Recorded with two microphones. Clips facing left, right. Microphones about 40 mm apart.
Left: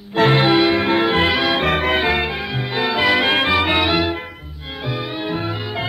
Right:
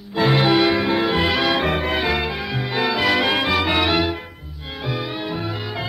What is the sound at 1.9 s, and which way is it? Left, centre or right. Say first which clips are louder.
Music: left 3 dB; centre.